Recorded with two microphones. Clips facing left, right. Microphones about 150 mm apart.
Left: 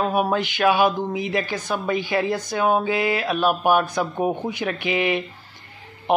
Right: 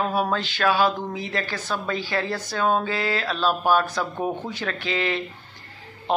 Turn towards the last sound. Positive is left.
turn(degrees=15)  # may be behind; listen again after turning